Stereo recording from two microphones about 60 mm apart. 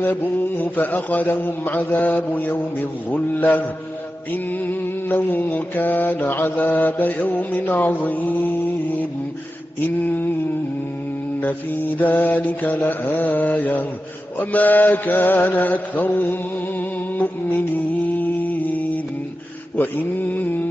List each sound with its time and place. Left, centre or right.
0.0 s a man's voice: left
4.3 s music: left
6.5 s a man's voice: left
9.8 s music: left
11.4 s a man's voice: left
14.4 s mantra: left
19.8 s music: left